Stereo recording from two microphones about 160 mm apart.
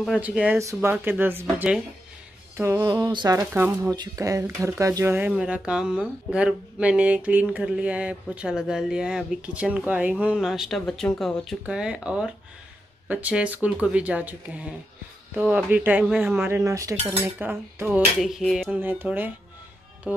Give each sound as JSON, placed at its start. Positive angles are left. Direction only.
{"t": 0.0, "sound": "speech", "side_deg": 0}
{"t": 16.4, "sound": "speech", "side_deg": -15}
{"t": 18.8, "sound": "speech", "side_deg": -10}
{"t": 20.1, "sound": "music", "side_deg": -10}